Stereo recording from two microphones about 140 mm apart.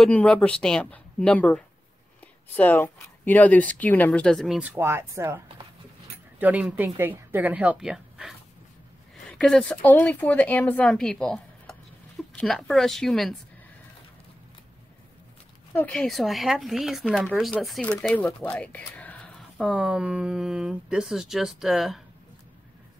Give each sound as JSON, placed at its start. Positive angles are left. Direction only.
{"t": 0.0, "sound": "speech", "side_deg": 10}
{"t": 4.6, "sound": "speech", "side_deg": -15}
{"t": 6.4, "sound": "speech", "side_deg": -10}
{"t": 15.7, "sound": "speech", "side_deg": 10}
{"t": 17.8, "sound": "speech", "side_deg": 10}
{"t": 19.6, "sound": "speech", "side_deg": -5}